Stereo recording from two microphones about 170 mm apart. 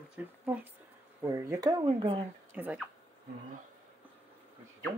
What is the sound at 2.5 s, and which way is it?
Speech, 10° right (ahead or behind).